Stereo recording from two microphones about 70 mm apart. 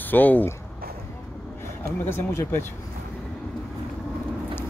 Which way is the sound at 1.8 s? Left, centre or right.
Left.